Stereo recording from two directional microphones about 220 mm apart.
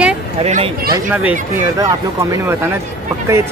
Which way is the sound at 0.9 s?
5° right (ahead or behind).